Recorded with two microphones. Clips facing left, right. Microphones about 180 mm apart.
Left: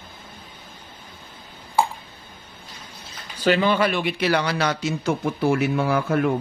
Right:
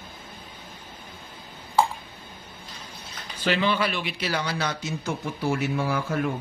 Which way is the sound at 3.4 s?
45° left (ahead or behind).